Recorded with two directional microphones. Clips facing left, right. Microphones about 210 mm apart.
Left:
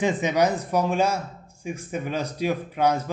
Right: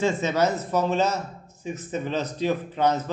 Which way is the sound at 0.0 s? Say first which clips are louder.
Left 1 dB; 15° left (ahead or behind).